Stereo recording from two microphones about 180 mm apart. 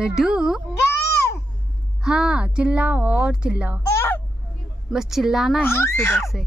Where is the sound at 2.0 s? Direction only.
5° right (ahead or behind).